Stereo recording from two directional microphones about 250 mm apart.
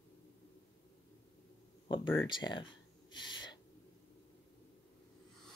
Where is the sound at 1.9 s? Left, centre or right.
Centre.